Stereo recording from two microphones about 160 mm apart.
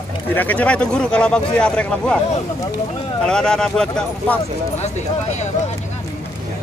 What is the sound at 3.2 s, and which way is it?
Speech, 5° left (ahead or behind).